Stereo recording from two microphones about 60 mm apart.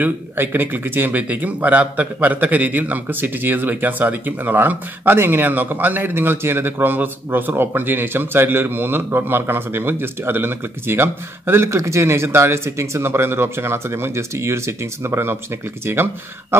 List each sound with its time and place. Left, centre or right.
0.0 s speech: right
15.8 s speech: right